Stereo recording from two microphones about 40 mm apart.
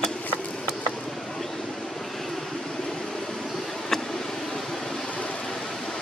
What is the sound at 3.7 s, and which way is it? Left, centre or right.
Vehicle, centre.